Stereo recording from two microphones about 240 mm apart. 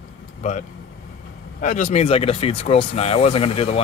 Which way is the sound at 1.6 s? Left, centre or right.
Left.